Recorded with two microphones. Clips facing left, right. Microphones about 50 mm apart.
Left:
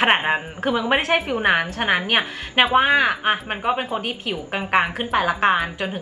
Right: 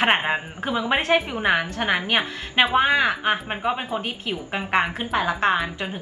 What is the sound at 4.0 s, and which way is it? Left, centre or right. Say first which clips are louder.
Speech: left 2 dB; left.